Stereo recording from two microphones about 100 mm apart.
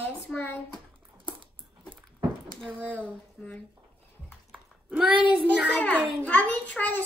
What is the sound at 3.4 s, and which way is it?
Speech, 10° left (ahead or behind).